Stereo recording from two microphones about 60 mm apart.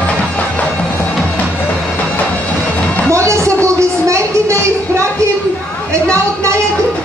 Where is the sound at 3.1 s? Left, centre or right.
Right.